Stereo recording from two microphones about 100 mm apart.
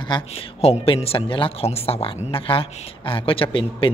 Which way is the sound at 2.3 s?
60° left (ahead or behind).